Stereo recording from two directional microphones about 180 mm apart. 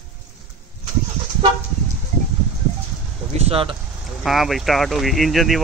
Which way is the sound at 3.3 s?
35° right (ahead or behind).